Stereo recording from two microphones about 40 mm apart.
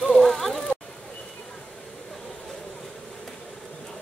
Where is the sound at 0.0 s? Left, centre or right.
Centre.